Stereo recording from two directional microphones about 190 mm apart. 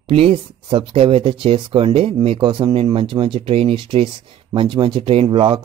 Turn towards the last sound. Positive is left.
turn(degrees=-25)  # may be behind; listen again after turning